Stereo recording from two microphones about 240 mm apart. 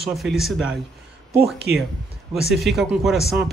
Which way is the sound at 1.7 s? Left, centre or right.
Right.